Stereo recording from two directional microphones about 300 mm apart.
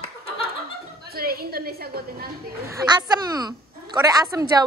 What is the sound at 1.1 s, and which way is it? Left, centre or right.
A woman's voice, right.